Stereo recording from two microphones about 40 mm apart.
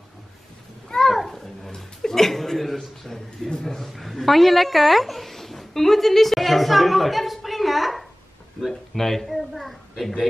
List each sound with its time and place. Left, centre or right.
0.8 s a sound: centre
3.5 s speech: centre
8.6 s speech: centre
8.9 s a child's voice: centre